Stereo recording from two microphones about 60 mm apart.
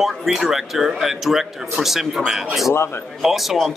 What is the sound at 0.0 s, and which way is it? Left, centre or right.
Speech, centre.